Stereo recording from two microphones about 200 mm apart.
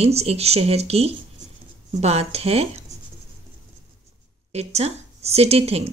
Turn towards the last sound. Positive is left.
turn(degrees=-30)  # may be behind; listen again after turning